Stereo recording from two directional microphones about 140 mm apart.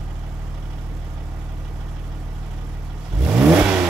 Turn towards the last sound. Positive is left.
turn(degrees=-5)  # may be behind; listen again after turning